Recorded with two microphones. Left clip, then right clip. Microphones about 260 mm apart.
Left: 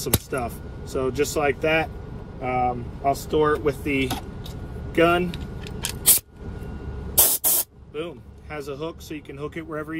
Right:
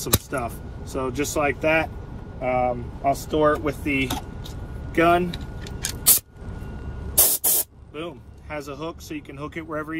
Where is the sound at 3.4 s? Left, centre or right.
Centre.